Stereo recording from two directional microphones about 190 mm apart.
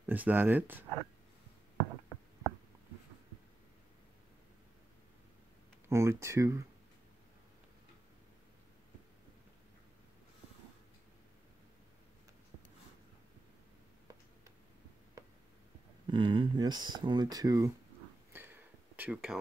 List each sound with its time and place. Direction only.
0.0 s speech: 10° right (ahead or behind)
5.9 s speech: 15° right (ahead or behind)
16.1 s speech: 25° right (ahead or behind)
18.3 s a sound: 10° right (ahead or behind)